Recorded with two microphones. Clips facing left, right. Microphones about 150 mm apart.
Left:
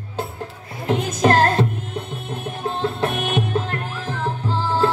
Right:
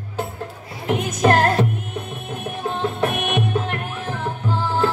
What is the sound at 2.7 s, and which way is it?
Music, 30° left (ahead or behind).